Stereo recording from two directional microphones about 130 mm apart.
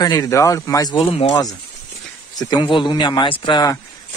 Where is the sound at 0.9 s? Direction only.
45° left (ahead or behind).